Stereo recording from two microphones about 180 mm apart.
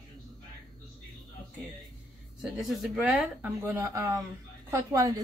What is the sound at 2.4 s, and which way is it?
A woman's voice, centre (ahead or behind).